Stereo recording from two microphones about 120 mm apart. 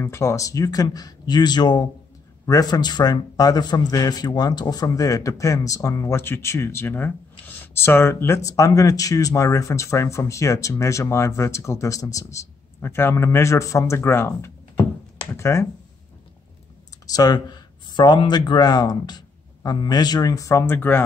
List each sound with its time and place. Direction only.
0.0 s a man's voice: 25° left (ahead or behind)
17.0 s speech: 30° left (ahead or behind)